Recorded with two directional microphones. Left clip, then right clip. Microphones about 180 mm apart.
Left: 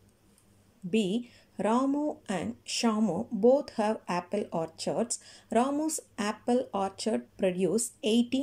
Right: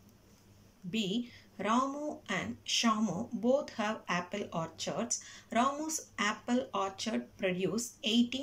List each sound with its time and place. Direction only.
0.8 s a woman's voice: 35° left (ahead or behind)